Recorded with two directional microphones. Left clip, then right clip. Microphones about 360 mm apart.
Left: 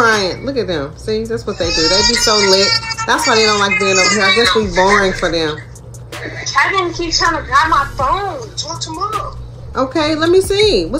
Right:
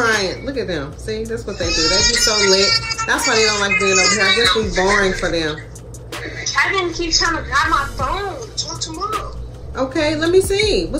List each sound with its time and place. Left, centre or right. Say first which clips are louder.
0.1 s a woman's voice: left 4 dB; centre